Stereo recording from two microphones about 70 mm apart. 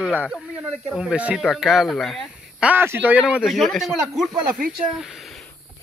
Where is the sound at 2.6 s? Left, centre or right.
Centre.